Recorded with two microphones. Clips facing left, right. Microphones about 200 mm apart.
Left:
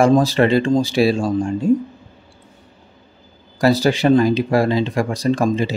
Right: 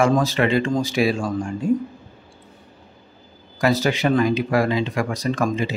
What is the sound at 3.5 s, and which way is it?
Speech, 35° left (ahead or behind).